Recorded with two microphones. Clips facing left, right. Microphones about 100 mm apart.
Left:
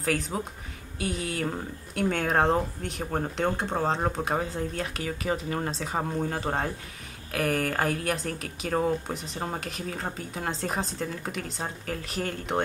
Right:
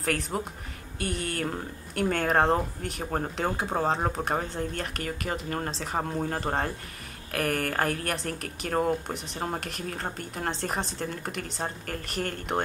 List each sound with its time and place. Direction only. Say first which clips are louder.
0.0 s speech: left 1 dB; centre (ahead or behind)